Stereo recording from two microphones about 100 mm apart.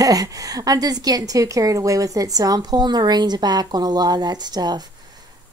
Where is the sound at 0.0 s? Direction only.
35° right (ahead or behind).